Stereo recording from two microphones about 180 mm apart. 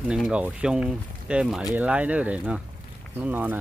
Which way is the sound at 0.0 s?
5° right (ahead or behind).